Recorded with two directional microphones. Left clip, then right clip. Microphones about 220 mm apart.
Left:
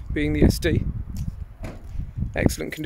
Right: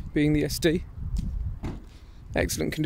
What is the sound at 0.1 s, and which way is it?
Speech, 15° right (ahead or behind).